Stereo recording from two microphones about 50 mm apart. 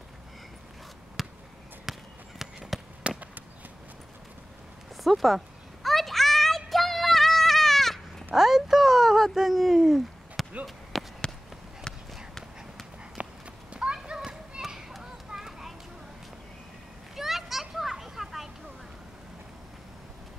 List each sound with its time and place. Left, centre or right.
1.2 s basketball bounce: centre
1.9 s a sound: centre
3.0 s basketball bounce: right
5.0 s children playing: centre
8.4 s a sound: centre
13.2 s horse: right
13.9 s children playing: centre
14.9 s a sound: centre
17.1 s children playing: centre